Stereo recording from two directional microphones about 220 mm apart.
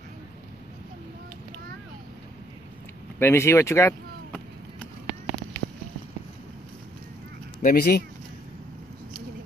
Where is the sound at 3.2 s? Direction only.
10° left (ahead or behind).